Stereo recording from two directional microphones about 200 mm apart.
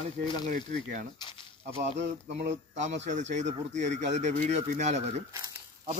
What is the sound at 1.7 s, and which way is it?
Speech, 30° right (ahead or behind).